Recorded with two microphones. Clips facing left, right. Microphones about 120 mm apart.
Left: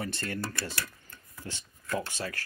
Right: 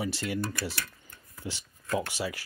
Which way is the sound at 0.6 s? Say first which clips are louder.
Right 2 dB; 10° right (ahead or behind).